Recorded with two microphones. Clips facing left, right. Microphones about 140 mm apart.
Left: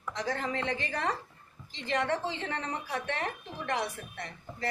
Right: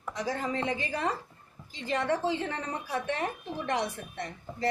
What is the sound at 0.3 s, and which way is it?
A woman's voice, 15° right (ahead or behind).